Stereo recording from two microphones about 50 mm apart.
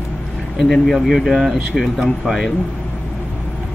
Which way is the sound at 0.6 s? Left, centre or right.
Centre.